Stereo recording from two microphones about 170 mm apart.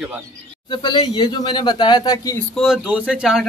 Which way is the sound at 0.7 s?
25° left (ahead or behind).